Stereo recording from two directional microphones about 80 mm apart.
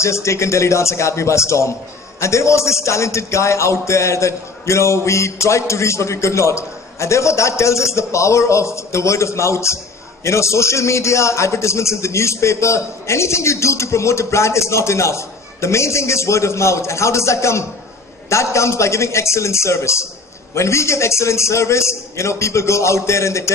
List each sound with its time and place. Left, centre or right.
0.0 s speech: left